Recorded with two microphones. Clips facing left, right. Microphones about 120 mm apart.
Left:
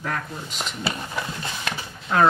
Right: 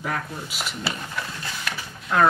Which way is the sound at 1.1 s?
25° left (ahead or behind).